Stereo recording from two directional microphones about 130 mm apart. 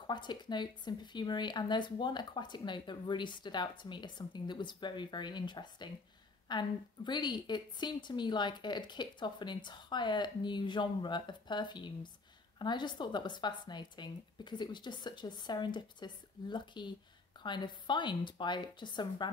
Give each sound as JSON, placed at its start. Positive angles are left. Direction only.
{"t": 0.0, "sound": "speech", "side_deg": 35}